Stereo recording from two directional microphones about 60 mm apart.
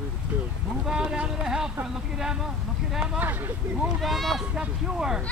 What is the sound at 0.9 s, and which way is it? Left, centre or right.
Speech, centre.